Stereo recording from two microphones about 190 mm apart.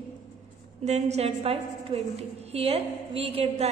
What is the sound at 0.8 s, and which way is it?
A woman's voice, 35° right (ahead or behind).